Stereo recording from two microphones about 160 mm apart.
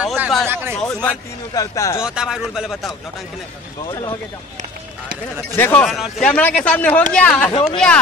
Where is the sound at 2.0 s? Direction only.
5° right (ahead or behind).